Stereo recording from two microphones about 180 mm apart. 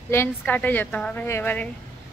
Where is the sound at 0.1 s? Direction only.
10° left (ahead or behind).